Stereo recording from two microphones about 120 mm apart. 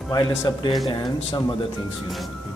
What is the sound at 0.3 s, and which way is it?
Speech, 25° left (ahead or behind).